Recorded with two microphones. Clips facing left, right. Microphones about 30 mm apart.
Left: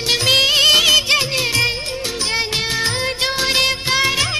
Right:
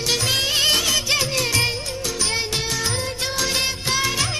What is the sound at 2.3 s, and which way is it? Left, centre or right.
Music, left.